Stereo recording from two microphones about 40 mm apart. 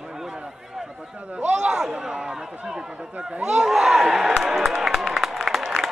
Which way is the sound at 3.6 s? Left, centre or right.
Centre.